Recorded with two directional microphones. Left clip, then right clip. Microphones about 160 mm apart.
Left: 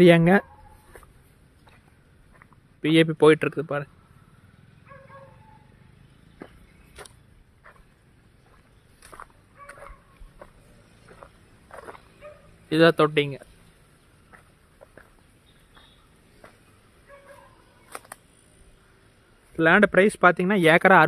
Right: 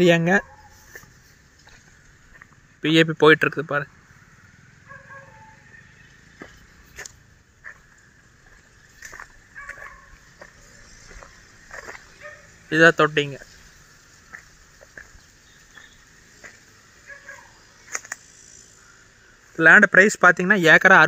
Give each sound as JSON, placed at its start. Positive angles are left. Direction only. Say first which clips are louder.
{"t": 0.0, "sound": "speech", "louder": "left 1 dB", "side_deg": 30}
{"t": 2.3, "sound": "speech", "louder": "right 5 dB", "side_deg": 5}
{"t": 9.1, "sound": "fowl", "louder": "right 2 dB", "side_deg": 0}
{"t": 11.7, "sound": "dog", "louder": "right 4 dB", "side_deg": 0}
{"t": 12.6, "sound": "speech", "louder": "right 3 dB", "side_deg": 15}
{"t": 17.8, "sound": "a sound", "louder": "right 9 dB", "side_deg": 5}
{"t": 19.5, "sound": "speech", "louder": "right 6 dB", "side_deg": 5}